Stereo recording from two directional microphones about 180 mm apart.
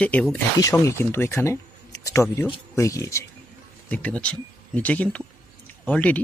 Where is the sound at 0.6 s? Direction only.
15° left (ahead or behind).